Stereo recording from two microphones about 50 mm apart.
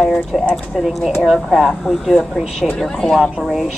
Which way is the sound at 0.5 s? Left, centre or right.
Centre.